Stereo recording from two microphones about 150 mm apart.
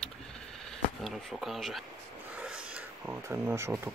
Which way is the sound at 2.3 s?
5° right (ahead or behind).